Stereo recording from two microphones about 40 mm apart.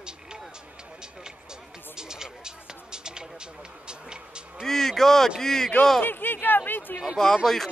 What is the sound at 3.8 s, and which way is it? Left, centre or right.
Vehicle, right.